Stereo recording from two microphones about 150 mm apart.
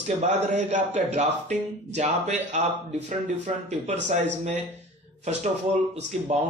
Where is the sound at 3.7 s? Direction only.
50° right (ahead or behind).